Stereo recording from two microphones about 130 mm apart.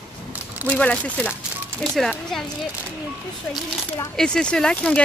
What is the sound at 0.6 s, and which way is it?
Speech, 10° left (ahead or behind).